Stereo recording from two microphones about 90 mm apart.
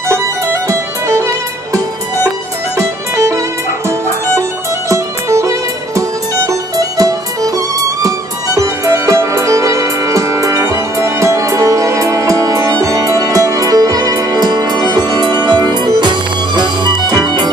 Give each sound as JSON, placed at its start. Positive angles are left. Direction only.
{"t": 0.1, "sound": "music", "side_deg": -30}
{"t": 2.8, "sound": "violin", "side_deg": -35}
{"t": 4.4, "sound": "music", "side_deg": -35}